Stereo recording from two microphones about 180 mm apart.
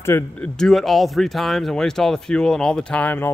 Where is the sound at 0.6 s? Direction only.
Centre (ahead or behind).